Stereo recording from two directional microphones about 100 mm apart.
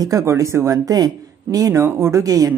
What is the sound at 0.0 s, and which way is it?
Speech, 30° right (ahead or behind).